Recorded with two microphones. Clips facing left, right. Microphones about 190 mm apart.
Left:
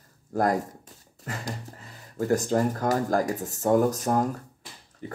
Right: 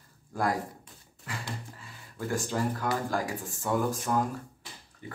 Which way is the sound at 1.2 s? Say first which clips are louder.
Left 4 dB; 40° left (ahead or behind).